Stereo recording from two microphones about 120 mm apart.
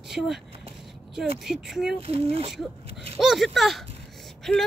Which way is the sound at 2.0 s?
55° right (ahead or behind).